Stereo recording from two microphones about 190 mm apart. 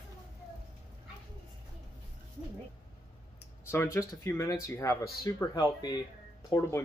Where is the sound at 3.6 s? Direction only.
15° left (ahead or behind).